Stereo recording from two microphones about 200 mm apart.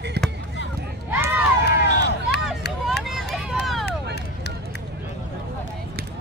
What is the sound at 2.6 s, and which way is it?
Vehicle, 55° left (ahead or behind).